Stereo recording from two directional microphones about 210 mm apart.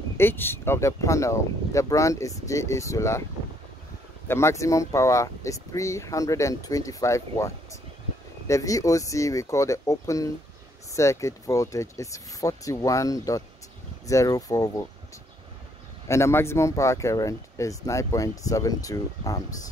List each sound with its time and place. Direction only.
0.2 s speech: 10° left (ahead or behind)
4.3 s speech: 10° left (ahead or behind)
16.1 s speech: 10° left (ahead or behind)